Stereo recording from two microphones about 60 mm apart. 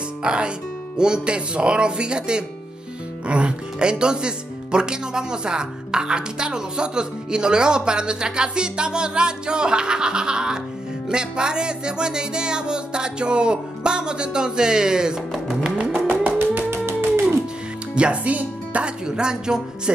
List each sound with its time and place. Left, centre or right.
0.2 s speech: centre
15.6 s music: centre
16.1 s music: right
17.9 s speech: centre
19.0 s speech: centre